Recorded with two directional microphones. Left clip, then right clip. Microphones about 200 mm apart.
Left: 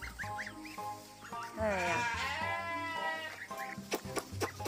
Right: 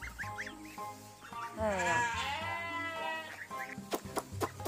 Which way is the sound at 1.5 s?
5° right (ahead or behind).